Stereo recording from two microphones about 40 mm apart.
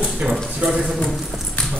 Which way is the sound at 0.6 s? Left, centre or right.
Centre.